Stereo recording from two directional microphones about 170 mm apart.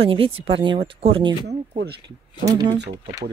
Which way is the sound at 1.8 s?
70° right (ahead or behind).